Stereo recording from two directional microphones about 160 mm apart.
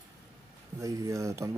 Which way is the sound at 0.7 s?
20° right (ahead or behind).